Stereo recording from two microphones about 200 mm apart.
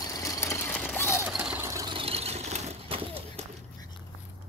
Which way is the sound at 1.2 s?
10° right (ahead or behind).